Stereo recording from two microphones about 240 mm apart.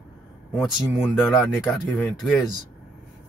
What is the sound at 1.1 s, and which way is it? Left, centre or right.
Speech, centre.